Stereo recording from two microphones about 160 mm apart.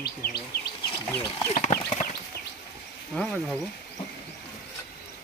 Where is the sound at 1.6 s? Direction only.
50° left (ahead or behind).